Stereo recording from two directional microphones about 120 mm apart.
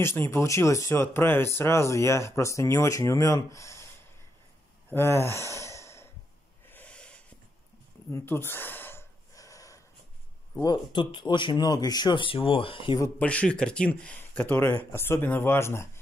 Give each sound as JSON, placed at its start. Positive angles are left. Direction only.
{"t": 0.0, "sound": "speech", "side_deg": 20}
{"t": 4.8, "sound": "sigh", "side_deg": 20}
{"t": 6.7, "sound": "snort", "side_deg": 10}
{"t": 8.1, "sound": "gasp", "side_deg": 20}
{"t": 10.6, "sound": "speech", "side_deg": 35}
{"t": 13.2, "sound": "speech", "side_deg": 10}